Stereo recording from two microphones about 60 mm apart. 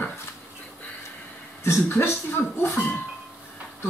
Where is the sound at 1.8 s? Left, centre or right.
Left.